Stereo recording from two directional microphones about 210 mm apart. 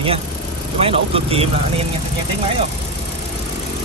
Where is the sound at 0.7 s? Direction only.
25° right (ahead or behind).